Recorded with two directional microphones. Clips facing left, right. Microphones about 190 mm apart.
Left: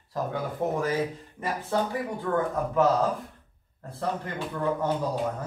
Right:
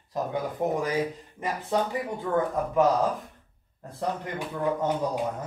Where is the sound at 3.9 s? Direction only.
15° right (ahead or behind).